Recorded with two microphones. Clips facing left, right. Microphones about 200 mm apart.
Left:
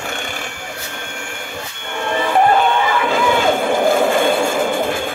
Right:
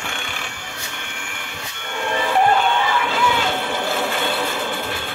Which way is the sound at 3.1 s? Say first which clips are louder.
Left 6 dB; 50° left (ahead or behind).